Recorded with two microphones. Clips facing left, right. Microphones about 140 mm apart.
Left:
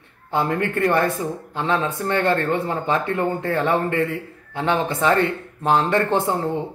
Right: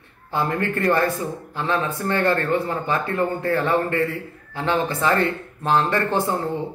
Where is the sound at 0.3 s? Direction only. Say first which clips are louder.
Left 1 dB; 20° left (ahead or behind).